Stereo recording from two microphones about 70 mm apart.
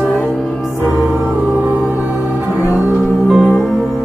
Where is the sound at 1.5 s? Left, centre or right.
Right.